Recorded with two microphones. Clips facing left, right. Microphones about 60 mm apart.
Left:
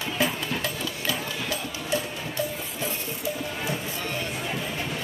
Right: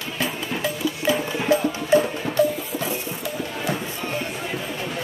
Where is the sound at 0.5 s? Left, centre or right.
Centre.